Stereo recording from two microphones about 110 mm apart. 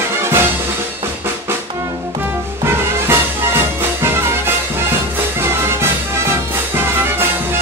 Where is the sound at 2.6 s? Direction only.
20° right (ahead or behind).